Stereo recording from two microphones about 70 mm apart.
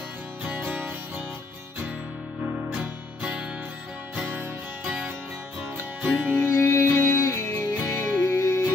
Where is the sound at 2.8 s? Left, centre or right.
Centre.